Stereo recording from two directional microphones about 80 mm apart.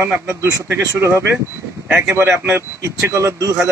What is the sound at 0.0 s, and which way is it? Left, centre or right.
A man's voice, right.